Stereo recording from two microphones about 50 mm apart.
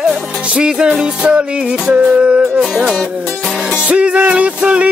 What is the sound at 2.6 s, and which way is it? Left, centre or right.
Music, centre.